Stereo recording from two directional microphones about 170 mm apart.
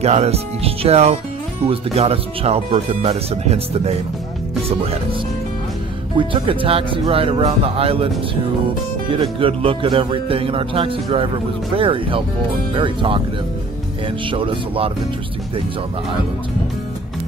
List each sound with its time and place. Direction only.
0.0 s speech: 40° right (ahead or behind)
6.1 s speech: 30° right (ahead or behind)
9.1 s speech: 35° right (ahead or behind)
14.2 s speech: 30° right (ahead or behind)